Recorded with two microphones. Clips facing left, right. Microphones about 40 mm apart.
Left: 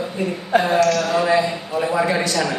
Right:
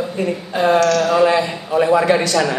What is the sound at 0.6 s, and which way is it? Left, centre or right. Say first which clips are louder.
Speech: right 6 dB; right.